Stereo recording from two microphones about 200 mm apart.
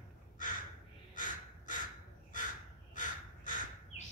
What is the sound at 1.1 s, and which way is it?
Crow, 40° left (ahead or behind).